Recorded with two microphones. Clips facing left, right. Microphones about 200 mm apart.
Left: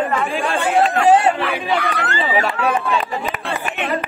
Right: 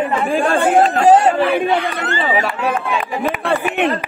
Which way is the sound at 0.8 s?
30° right (ahead or behind).